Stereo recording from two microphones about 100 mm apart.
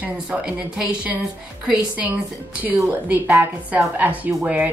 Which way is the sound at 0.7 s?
10° right (ahead or behind).